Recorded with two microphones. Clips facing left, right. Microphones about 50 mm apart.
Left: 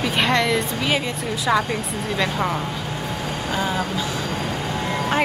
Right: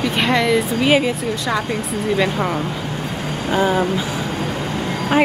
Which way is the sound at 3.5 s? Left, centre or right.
Right.